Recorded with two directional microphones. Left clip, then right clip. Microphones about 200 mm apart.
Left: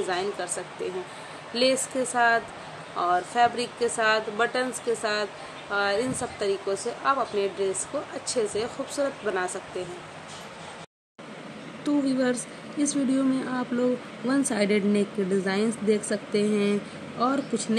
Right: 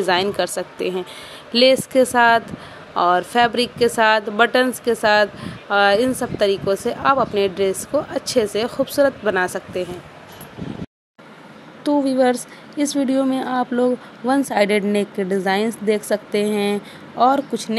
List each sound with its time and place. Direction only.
0.0 s speech: 50° right (ahead or behind)
12.2 s a woman's voice: 40° right (ahead or behind)